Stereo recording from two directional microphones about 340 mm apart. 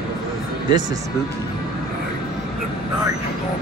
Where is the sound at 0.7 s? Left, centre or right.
Centre.